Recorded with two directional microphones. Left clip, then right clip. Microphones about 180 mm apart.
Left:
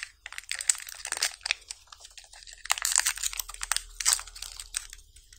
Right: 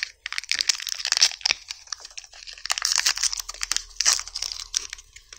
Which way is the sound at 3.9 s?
20° right (ahead or behind).